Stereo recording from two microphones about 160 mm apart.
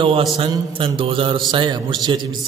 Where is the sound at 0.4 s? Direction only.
30° right (ahead or behind).